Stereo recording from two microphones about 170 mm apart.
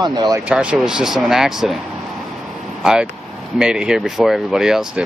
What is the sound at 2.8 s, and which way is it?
Speech, 5° right (ahead or behind).